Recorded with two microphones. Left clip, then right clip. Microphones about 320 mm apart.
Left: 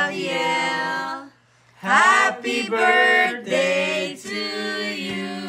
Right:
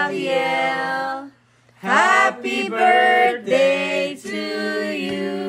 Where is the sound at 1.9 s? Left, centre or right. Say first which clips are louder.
Even; centre.